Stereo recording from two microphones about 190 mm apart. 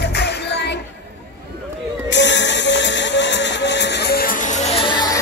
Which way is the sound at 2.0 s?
70° left (ahead or behind).